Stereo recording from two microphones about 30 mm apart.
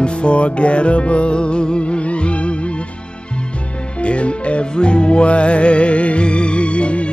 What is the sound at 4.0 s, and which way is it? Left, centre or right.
Music, left.